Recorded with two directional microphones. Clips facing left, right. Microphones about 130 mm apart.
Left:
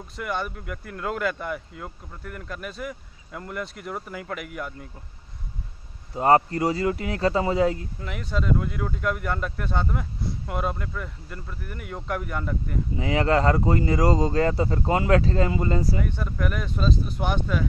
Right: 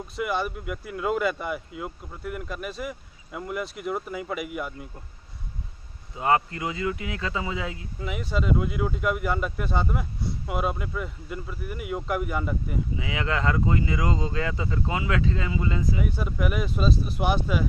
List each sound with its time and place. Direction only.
0.1 s speech: 5° right (ahead or behind)
6.1 s speech: 40° left (ahead or behind)
8.0 s speech: 5° right (ahead or behind)
12.9 s speech: 40° left (ahead or behind)
16.0 s speech: 5° right (ahead or behind)